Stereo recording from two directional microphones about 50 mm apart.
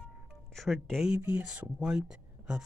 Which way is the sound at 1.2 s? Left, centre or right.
Right.